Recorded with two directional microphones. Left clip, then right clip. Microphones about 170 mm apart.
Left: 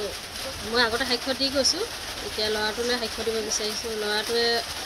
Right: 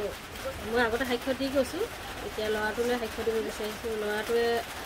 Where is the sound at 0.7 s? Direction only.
Centre (ahead or behind).